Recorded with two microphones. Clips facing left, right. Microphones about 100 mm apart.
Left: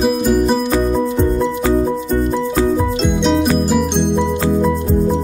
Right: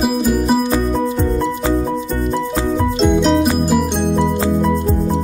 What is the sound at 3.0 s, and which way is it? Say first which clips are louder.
Music: right 2 dB; centre (ahead or behind).